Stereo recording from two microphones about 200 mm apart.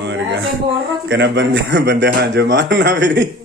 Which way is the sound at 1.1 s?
65° right (ahead or behind).